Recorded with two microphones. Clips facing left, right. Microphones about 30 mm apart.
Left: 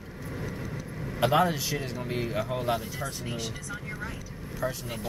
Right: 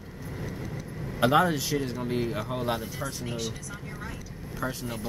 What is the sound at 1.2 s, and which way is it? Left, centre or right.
Speech, centre.